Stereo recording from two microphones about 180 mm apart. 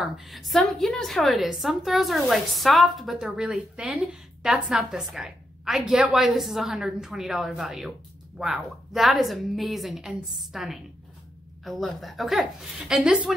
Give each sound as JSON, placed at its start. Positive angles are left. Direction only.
{"t": 0.0, "sound": "a woman's voice", "side_deg": 0}